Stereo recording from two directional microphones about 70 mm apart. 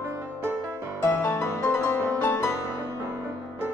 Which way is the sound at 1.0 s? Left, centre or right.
Left.